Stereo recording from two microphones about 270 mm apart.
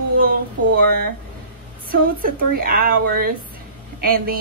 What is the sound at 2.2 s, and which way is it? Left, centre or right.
A woman's voice, right.